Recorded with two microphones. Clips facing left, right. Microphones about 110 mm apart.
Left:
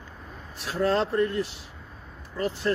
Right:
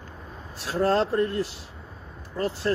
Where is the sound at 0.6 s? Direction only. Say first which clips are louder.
Right 2 dB; 35° right (ahead or behind).